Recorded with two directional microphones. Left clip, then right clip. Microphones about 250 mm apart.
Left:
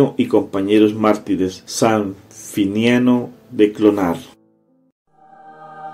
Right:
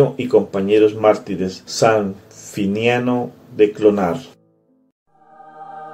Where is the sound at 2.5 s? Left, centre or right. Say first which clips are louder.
Left 1 dB; left.